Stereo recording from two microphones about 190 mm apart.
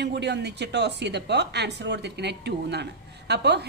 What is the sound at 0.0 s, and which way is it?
A woman's voice, 65° right (ahead or behind).